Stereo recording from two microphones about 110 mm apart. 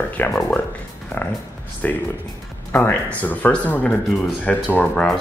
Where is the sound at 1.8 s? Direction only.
15° left (ahead or behind).